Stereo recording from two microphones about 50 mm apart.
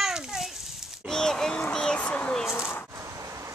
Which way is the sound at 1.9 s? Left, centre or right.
Left.